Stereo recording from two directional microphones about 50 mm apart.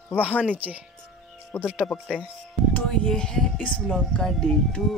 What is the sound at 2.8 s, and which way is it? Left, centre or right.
Speech, centre.